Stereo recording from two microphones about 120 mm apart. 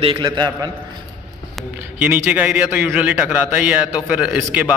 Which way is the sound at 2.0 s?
15° right (ahead or behind).